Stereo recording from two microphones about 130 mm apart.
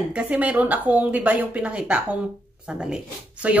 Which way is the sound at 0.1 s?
10° right (ahead or behind).